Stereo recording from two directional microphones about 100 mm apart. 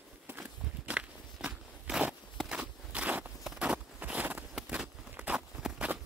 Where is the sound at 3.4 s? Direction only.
10° right (ahead or behind).